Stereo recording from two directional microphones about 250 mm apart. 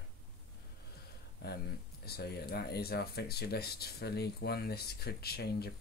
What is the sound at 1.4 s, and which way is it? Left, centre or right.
Speech, left.